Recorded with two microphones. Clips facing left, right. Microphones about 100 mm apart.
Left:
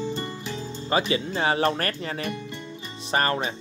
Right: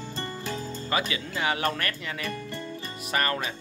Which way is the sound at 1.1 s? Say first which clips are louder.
Left 5 dB; 25° left (ahead or behind).